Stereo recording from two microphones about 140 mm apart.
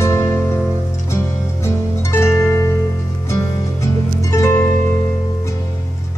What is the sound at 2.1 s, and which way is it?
Harp, 20° left (ahead or behind).